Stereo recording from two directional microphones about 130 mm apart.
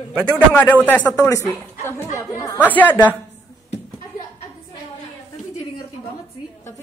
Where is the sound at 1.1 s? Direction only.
25° left (ahead or behind).